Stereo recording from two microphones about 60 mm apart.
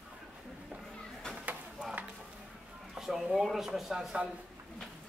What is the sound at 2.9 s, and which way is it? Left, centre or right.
Speech, centre.